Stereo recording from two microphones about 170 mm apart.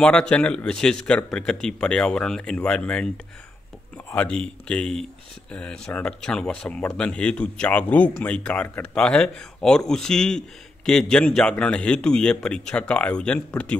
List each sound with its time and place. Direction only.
0.0 s speech: 5° left (ahead or behind)
4.1 s speech: 5° left (ahead or behind)